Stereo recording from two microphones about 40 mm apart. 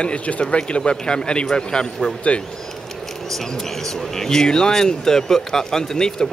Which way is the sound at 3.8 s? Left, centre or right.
Centre.